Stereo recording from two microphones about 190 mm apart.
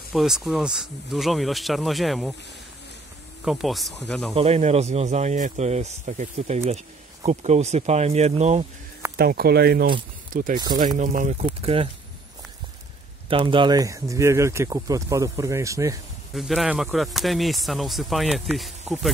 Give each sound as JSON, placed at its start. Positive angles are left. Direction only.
{"t": 0.1, "sound": "speech", "side_deg": 0}
{"t": 3.4, "sound": "speech", "side_deg": 0}
{"t": 4.4, "sound": "speech", "side_deg": -35}
{"t": 9.1, "sound": "speech", "side_deg": -55}
{"t": 10.3, "sound": "speech", "side_deg": -45}
{"t": 11.4, "sound": "speech", "side_deg": -30}
{"t": 13.3, "sound": "speech", "side_deg": -25}
{"t": 16.3, "sound": "speech", "side_deg": 0}